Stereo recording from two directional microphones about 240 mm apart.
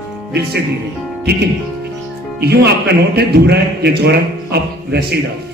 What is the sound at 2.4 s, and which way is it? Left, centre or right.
A man's voice, right.